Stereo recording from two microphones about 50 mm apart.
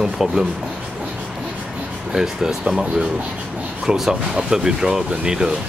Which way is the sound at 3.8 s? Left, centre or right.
Centre.